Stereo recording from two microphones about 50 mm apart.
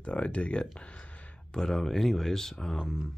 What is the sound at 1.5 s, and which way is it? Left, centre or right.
Speech, centre.